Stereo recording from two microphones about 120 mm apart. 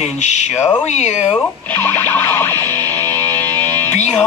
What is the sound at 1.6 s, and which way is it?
Music, 15° left (ahead or behind).